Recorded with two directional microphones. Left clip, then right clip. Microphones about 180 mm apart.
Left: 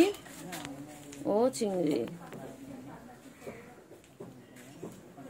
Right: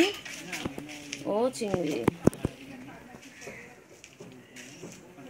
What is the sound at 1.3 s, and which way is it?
Speech, 10° left (ahead or behind).